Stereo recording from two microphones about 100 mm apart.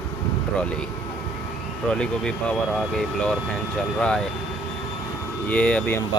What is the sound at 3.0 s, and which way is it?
Speech, 10° left (ahead or behind).